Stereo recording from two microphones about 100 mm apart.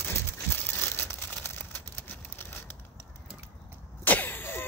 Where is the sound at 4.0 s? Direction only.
20° left (ahead or behind).